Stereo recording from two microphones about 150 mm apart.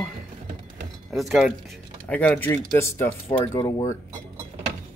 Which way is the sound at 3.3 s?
30° left (ahead or behind).